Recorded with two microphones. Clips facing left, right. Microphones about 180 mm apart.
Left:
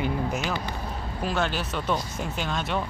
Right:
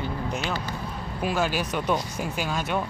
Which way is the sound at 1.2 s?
5° right (ahead or behind).